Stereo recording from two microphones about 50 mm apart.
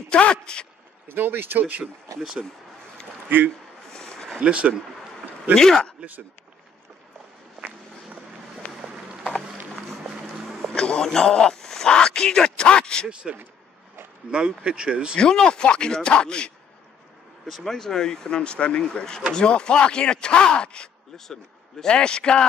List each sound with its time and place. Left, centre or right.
0.1 s speech: centre
1.0 s speech: right
3.3 s a man's voice: right
3.9 s a sound: centre
4.4 s speech: right
5.5 s speech: centre
10.7 s a man's voice: centre
13.1 s speech: right
14.6 s speech: right
15.1 s speech: centre
17.5 s speech: centre